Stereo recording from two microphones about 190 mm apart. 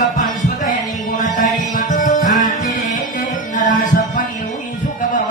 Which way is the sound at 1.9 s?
45° left (ahead or behind).